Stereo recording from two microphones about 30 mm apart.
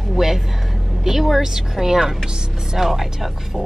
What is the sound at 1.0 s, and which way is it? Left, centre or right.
Speech, centre.